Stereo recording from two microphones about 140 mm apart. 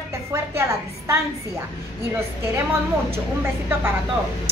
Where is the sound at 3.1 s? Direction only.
15° right (ahead or behind).